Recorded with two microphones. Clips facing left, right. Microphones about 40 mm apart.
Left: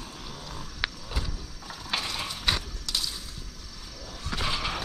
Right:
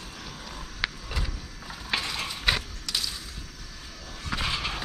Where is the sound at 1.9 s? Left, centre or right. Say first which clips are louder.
Right 2 dB; centre.